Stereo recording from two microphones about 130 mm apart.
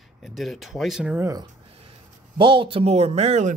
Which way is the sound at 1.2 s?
25° right (ahead or behind).